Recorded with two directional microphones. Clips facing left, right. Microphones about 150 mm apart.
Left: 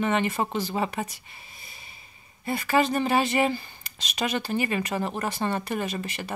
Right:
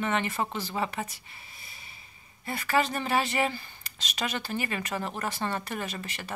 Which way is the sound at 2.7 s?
20° left (ahead or behind).